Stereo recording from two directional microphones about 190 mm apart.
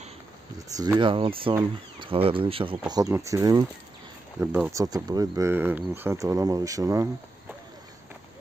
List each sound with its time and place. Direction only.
0.9 s speech: 25° right (ahead or behind)